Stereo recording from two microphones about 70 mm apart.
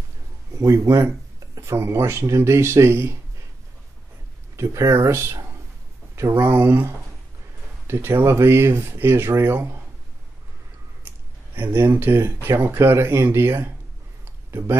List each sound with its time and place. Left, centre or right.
0.6 s speech: right
4.6 s speech: right
6.4 s speech: right
11.5 s speech: right